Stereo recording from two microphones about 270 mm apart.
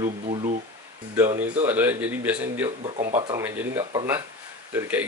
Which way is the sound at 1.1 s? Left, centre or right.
Centre.